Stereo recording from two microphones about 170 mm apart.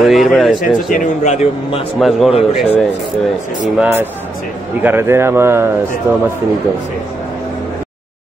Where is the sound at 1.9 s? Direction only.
Centre (ahead or behind).